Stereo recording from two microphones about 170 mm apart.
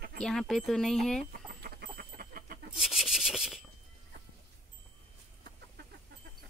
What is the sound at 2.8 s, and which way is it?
Rub, centre (ahead or behind).